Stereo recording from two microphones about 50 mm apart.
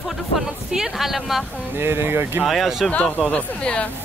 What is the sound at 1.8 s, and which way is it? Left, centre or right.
Speech, right.